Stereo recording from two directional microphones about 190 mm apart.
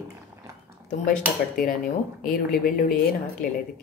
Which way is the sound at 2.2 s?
50° left (ahead or behind).